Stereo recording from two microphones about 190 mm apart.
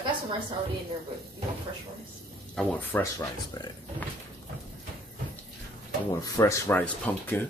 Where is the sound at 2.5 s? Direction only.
10° left (ahead or behind).